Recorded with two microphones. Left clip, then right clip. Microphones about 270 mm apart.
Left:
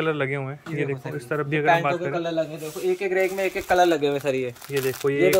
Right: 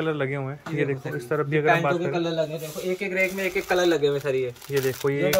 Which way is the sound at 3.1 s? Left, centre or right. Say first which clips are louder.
Left 1 dB; left.